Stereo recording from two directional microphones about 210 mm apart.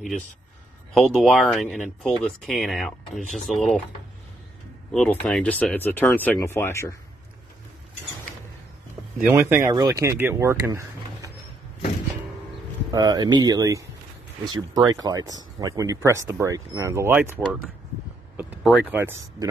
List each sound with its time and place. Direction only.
0.9 s speech: centre (ahead or behind)
4.9 s speech: 5° left (ahead or behind)
9.2 s speech: 10° right (ahead or behind)
12.9 s speech: 20° right (ahead or behind)
18.3 s a sound: 10° right (ahead or behind)
18.6 s speech: centre (ahead or behind)